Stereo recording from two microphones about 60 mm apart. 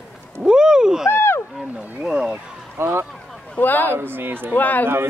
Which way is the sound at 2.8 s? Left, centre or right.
Right.